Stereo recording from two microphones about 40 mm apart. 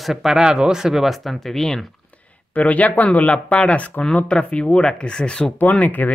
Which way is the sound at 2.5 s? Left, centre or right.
Left.